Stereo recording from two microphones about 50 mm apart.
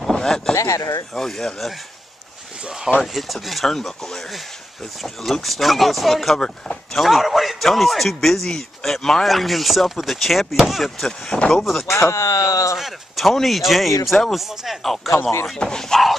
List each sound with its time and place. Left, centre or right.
0.1 s a sound: centre
0.6 s speech: left
1.1 s speech: centre
3.0 s a man's voice: centre
6.4 s speech: centre
7.0 s a man's voice: centre
11.3 s speech: left
11.8 s speech: left
12.7 s a man's voice: centre